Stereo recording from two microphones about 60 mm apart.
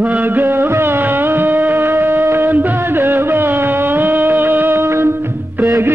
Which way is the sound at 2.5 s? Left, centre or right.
Right.